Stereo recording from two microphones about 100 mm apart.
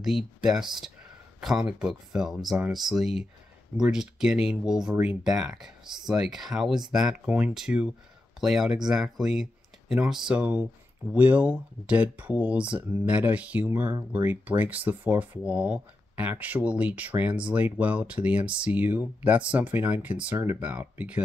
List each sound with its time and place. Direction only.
0.0 s speech: 5° right (ahead or behind)